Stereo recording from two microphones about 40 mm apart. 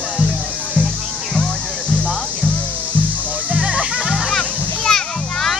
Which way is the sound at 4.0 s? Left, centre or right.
Centre.